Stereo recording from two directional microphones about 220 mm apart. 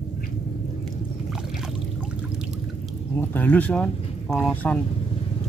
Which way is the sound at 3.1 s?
10° left (ahead or behind).